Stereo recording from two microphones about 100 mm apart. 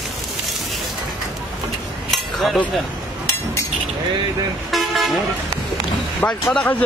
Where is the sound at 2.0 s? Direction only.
Centre (ahead or behind).